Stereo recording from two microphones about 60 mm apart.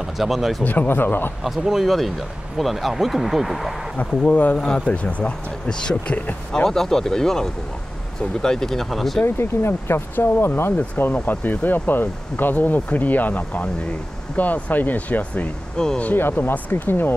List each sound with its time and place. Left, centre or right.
0.0 s speech: centre
0.7 s speech: left
1.4 s speech: centre
4.0 s speech: centre
6.5 s speech: centre
9.2 s speech: left
15.8 s speech: centre
16.2 s speech: left